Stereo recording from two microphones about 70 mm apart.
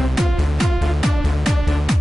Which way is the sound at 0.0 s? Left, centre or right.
Centre.